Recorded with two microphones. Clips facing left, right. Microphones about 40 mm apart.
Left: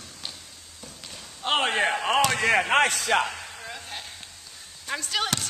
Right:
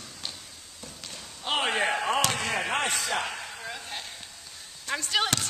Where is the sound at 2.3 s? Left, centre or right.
Left.